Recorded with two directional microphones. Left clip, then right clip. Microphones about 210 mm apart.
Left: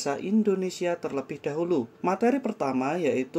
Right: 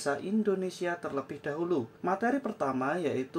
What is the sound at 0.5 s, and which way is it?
Speech, 25° right (ahead or behind).